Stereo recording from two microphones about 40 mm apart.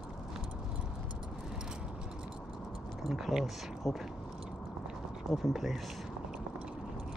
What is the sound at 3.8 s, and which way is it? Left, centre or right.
Speech, centre.